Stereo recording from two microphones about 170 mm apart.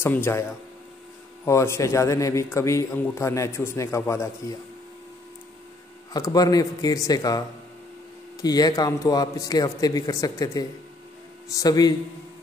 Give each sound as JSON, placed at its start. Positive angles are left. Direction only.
{"t": 0.0, "sound": "a man's voice", "side_deg": 15}
{"t": 6.1, "sound": "speech", "side_deg": 20}